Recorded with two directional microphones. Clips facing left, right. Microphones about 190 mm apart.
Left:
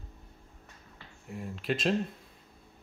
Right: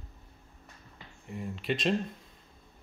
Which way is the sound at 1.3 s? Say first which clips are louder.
Even; centre (ahead or behind).